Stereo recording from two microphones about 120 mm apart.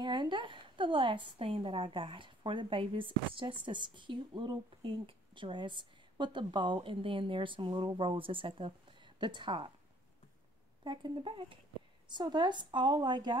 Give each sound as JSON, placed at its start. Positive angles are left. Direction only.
{"t": 0.0, "sound": "a woman's voice", "side_deg": -40}
{"t": 10.8, "sound": "a woman's voice", "side_deg": -40}